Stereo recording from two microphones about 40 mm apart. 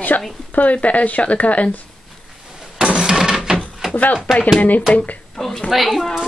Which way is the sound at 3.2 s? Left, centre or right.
Centre.